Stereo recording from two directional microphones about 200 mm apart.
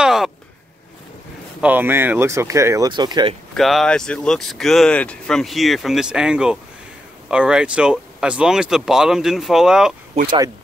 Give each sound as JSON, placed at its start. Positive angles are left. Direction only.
{"t": 0.0, "sound": "a sound", "side_deg": 0}
{"t": 1.6, "sound": "speech", "side_deg": -10}
{"t": 3.5, "sound": "speech", "side_deg": 0}